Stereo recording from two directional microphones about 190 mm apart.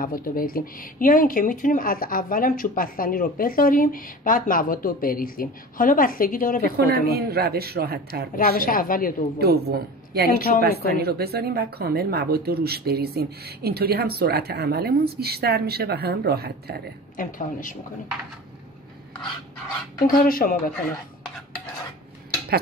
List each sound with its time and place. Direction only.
0.0 s speech: 50° left (ahead or behind)
6.9 s speech: 55° right (ahead or behind)
8.4 s speech: 45° left (ahead or behind)
9.4 s speech: 55° right (ahead or behind)
17.2 s speech: 45° left (ahead or behind)
20.0 s speech: 50° left (ahead or behind)